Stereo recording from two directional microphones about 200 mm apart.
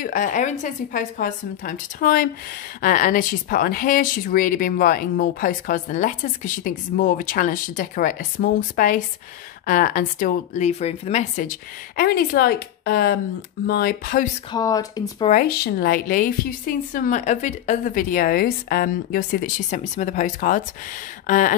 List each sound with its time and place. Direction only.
0.0 s a woman's voice: 40° left (ahead or behind)
12.0 s speech: 50° left (ahead or behind)
14.5 s speech: 20° left (ahead or behind)
15.2 s a woman's voice: 45° left (ahead or behind)